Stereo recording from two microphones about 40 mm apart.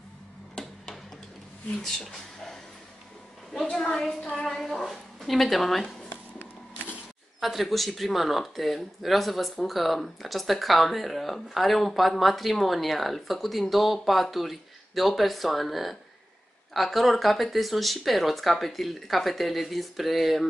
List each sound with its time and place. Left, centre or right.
1.8 s speech: centre
3.7 s a woman's voice: centre
4.5 s speech: centre
7.3 s speech: centre